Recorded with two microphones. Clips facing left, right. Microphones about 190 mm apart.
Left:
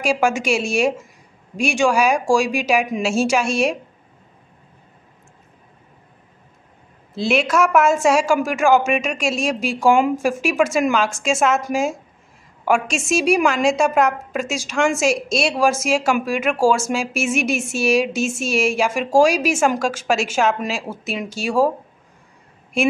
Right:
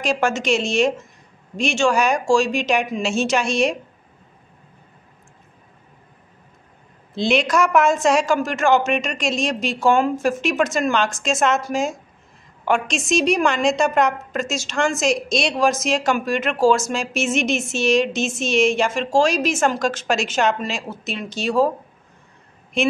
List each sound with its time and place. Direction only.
0.0 s a woman's voice: 10° left (ahead or behind)
7.2 s a woman's voice: 5° left (ahead or behind)
22.8 s a woman's voice: 10° left (ahead or behind)